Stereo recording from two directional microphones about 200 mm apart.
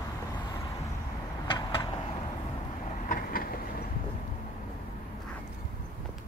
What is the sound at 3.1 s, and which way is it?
Vehicle, 45° left (ahead or behind).